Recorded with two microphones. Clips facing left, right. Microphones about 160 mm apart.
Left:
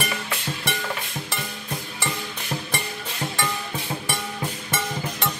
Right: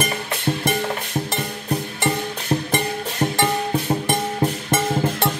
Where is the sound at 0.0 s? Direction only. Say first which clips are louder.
Right 6 dB; 40° right (ahead or behind).